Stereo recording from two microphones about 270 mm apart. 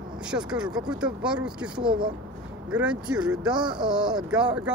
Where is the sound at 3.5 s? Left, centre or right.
Centre.